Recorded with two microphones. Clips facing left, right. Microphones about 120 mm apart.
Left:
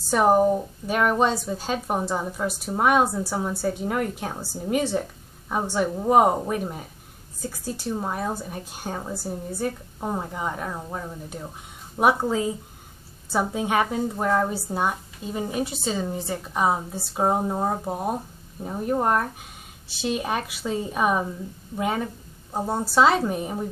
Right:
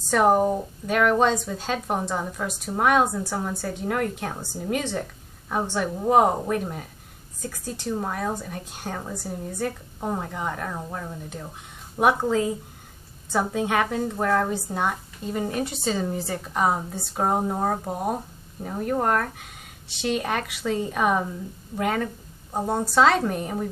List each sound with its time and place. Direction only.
0.1 s speech: 5° left (ahead or behind)
3.6 s a woman's voice: 20° left (ahead or behind)
9.1 s a woman's voice: 35° left (ahead or behind)
9.6 s speech: 10° left (ahead or behind)
12.0 s a woman's voice: 5° left (ahead or behind)
13.3 s a woman's voice: 15° left (ahead or behind)
22.5 s speech: 5° left (ahead or behind)